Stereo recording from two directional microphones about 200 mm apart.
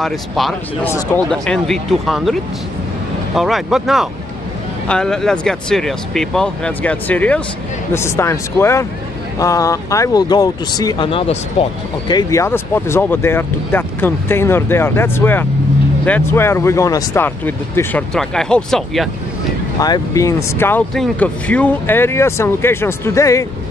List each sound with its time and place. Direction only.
0.0 s speech: centre (ahead or behind); by 11.7 s 30° left (ahead or behind)
12.1 s speech: 20° left (ahead or behind)
19.8 s speech: 15° left (ahead or behind)